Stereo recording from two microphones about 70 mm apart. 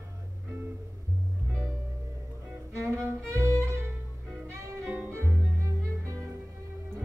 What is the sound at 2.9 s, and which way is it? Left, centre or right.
Music, right.